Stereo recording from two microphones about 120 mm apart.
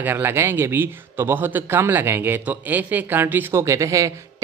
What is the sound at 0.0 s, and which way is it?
A man's voice, 15° right (ahead or behind).